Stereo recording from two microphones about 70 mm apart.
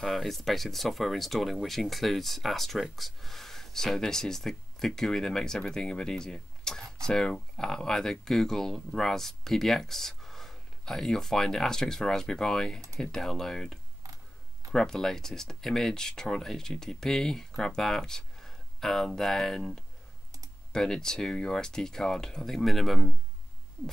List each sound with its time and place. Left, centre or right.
0.0 s speech: centre
14.0 s tick-tock: right
14.7 s speech: centre